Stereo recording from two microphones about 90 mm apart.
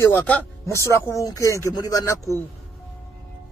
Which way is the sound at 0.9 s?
40° left (ahead or behind).